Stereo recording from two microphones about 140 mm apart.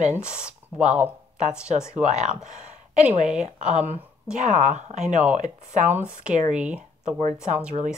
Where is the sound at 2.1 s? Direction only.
55° right (ahead or behind).